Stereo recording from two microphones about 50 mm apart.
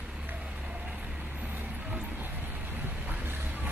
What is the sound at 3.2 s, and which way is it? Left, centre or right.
Vehicle, right.